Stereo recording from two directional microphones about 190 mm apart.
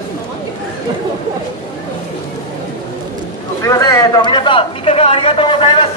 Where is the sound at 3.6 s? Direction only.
15° left (ahead or behind).